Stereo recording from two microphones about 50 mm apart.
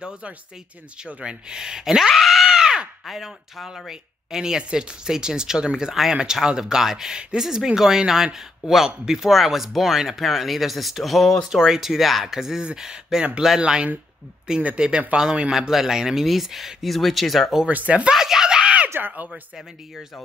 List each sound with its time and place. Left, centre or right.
1.0 s speech: centre
13.6 s speech: centre
15.5 s speech: centre
17.6 s speech: right
18.1 s screaming: centre
18.9 s speech: right